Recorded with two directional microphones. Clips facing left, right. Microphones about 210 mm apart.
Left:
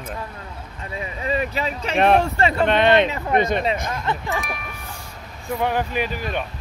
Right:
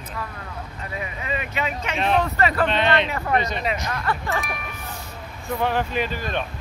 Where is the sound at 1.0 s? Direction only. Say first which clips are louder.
Left 7 dB; 35° left (ahead or behind).